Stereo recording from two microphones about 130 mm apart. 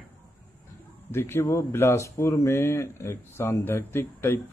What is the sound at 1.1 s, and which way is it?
Speech, 20° left (ahead or behind).